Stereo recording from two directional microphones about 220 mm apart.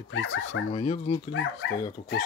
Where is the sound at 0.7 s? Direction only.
25° left (ahead or behind).